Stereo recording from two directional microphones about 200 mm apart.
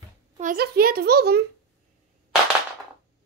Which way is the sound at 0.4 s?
45° right (ahead or behind).